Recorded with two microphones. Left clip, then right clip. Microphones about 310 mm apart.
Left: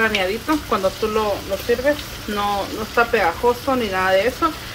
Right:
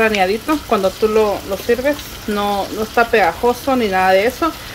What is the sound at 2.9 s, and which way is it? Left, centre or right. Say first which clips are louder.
Speech: right 4 dB; right.